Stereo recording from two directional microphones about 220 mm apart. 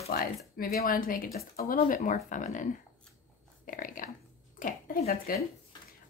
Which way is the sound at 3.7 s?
40° left (ahead or behind).